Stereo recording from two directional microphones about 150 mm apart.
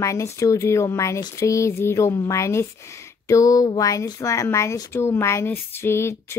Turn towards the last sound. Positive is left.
turn(degrees=15)  # may be behind; listen again after turning